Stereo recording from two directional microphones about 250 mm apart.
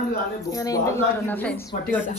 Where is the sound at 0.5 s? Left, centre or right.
Centre.